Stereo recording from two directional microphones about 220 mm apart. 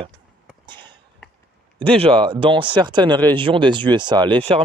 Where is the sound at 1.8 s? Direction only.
25° right (ahead or behind).